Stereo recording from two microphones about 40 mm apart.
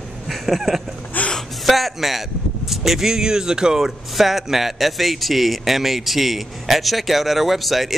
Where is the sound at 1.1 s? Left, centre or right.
Left.